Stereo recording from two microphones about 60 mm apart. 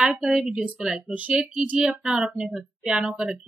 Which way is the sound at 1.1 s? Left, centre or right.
Right.